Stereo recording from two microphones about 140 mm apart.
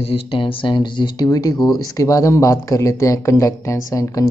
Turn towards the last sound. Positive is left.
turn(degrees=25)  # may be behind; listen again after turning